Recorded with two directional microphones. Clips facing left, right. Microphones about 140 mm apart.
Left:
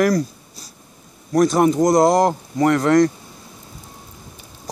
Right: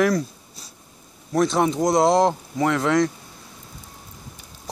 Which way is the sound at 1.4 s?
10° left (ahead or behind).